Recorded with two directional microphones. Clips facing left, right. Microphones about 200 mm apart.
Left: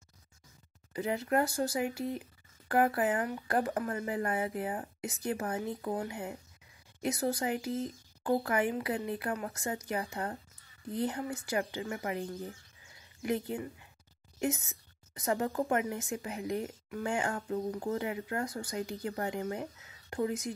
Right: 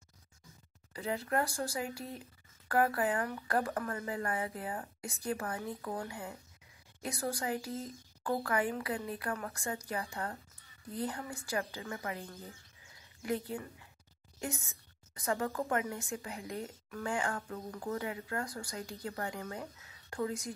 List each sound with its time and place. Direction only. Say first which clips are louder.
0.9 s a woman's voice: left 4 dB; 25° left (ahead or behind)